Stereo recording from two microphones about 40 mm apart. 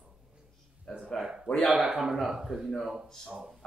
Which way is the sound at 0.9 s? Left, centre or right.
Centre.